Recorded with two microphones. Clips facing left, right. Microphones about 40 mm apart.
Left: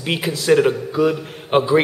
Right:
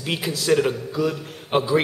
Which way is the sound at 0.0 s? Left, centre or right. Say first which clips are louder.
Left 4 dB; centre.